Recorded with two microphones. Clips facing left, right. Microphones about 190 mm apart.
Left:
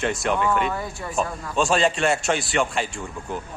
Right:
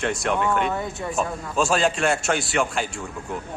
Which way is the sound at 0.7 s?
20° right (ahead or behind).